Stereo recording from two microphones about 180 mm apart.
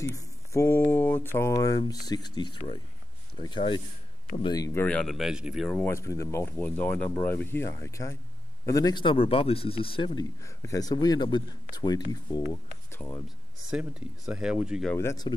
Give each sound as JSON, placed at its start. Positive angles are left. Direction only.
{"t": 0.0, "sound": "speech", "side_deg": 15}
{"t": 10.4, "sound": "speech", "side_deg": 15}
{"t": 12.9, "sound": "speech", "side_deg": 15}
{"t": 13.6, "sound": "speech", "side_deg": -5}
{"t": 15.0, "sound": "speech", "side_deg": 20}